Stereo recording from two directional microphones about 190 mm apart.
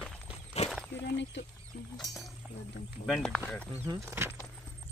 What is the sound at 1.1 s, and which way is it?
Speech, 70° left (ahead or behind).